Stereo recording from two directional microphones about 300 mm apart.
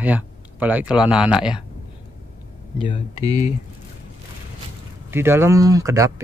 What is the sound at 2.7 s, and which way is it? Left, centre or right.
Speech, centre.